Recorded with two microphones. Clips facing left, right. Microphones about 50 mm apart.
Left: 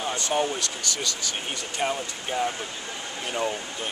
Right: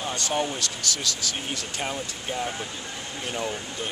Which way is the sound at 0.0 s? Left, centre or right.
Centre.